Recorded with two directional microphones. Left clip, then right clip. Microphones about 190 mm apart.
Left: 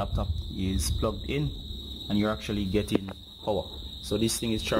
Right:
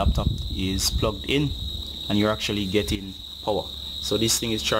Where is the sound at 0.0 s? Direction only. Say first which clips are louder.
Right 6 dB; 10° right (ahead or behind).